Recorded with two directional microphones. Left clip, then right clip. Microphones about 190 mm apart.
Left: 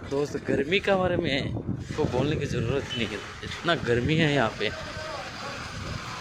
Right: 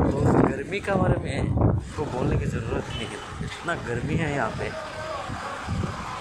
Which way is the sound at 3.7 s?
65° left (ahead or behind).